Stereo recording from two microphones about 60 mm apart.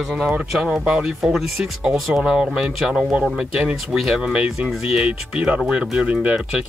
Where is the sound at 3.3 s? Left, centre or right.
Centre.